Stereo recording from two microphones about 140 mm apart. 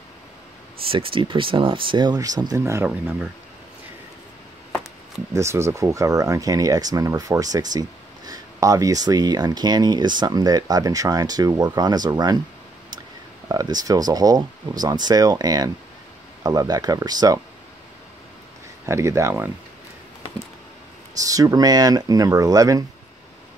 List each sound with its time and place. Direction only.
0.8 s speech: 40° right (ahead or behind)
2.6 s speech: 15° right (ahead or behind)
5.3 s speech: 20° right (ahead or behind)
13.5 s speech: 30° right (ahead or behind)
18.9 s speech: 20° right (ahead or behind)
21.2 s speech: 25° right (ahead or behind)